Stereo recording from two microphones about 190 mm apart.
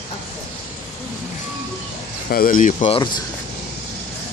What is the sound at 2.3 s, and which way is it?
Speech, 45° left (ahead or behind).